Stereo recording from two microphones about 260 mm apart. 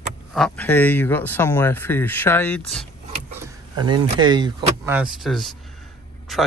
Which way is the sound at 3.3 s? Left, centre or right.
Centre.